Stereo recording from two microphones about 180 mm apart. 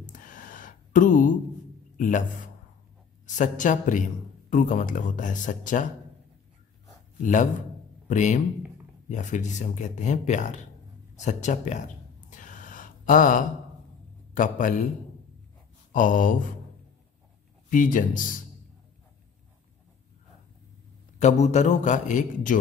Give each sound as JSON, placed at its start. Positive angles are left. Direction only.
{"t": 0.0, "sound": "a sound", "side_deg": 45}
{"t": 2.0, "sound": "a man's voice", "side_deg": 45}
{"t": 8.1, "sound": "speech", "side_deg": 45}
{"t": 12.3, "sound": "a sound", "side_deg": 45}
{"t": 14.3, "sound": "speech", "side_deg": 50}
{"t": 15.9, "sound": "speech", "side_deg": 45}
{"t": 17.6, "sound": "speech", "side_deg": 45}
{"t": 21.2, "sound": "speech", "side_deg": 40}